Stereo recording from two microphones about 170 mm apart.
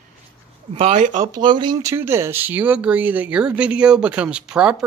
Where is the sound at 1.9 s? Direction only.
15° right (ahead or behind).